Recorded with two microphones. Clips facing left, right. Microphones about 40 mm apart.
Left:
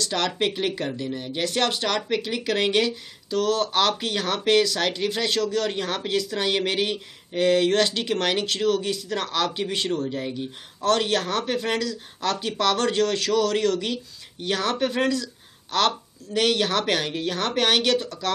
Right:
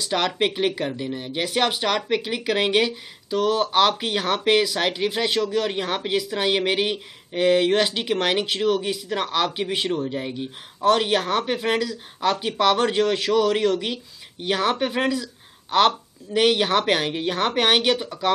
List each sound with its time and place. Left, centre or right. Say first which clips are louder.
0.0 s speech: right 2 dB; centre